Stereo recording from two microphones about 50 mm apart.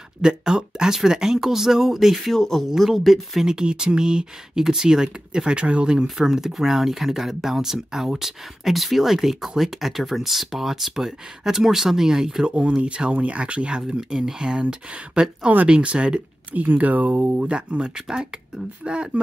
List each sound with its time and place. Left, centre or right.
0.2 s speech: centre
2.3 s speech: centre
3.4 s speech: centre
6.0 s speech: centre
17.9 s speech: centre
18.9 s speech: right